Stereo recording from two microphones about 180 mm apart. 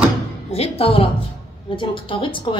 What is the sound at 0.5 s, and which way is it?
A woman's voice, 35° left (ahead or behind).